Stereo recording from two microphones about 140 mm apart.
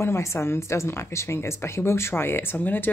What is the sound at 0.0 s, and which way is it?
Speech, 20° left (ahead or behind).